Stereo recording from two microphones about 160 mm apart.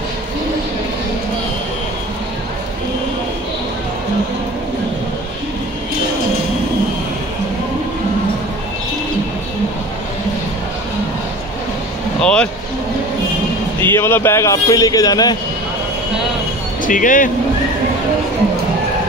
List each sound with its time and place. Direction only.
12.2 s a sound: 5° left (ahead or behind)
13.9 s a man's voice: 15° left (ahead or behind)
16.8 s speech: 55° left (ahead or behind)